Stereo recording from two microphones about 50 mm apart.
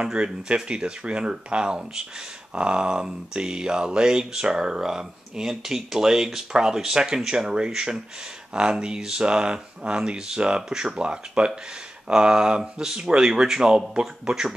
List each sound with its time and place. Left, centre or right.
0.0 s speech: centre